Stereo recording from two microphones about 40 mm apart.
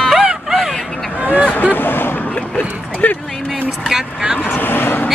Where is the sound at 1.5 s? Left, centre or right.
Left.